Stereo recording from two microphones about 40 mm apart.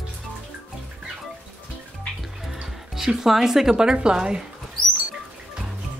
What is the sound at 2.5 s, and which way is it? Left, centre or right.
Speech, centre.